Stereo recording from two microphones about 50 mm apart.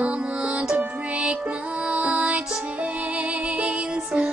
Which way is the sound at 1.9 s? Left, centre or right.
Right.